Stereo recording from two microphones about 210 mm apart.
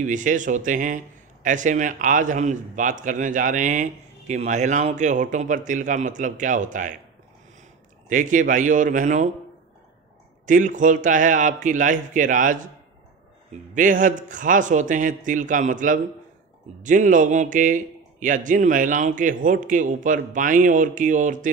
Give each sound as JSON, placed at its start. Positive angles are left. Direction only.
{"t": 0.0, "sound": "a man's voice", "side_deg": -35}
{"t": 8.1, "sound": "a man's voice", "side_deg": -35}
{"t": 10.4, "sound": "a man's voice", "side_deg": -35}
{"t": 13.7, "sound": "a man's voice", "side_deg": -40}